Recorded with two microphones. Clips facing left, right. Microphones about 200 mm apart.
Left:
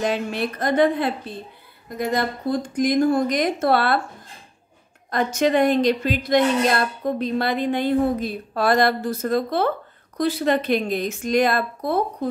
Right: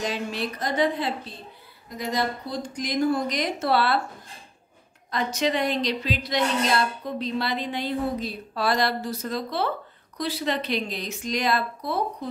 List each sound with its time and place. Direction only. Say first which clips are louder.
0.0 s a woman's voice: left 5 dB; 55° left (ahead or behind)
5.1 s speech: left 6 dB; 50° left (ahead or behind)